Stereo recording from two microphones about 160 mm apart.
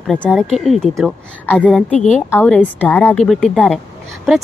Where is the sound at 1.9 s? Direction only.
45° left (ahead or behind).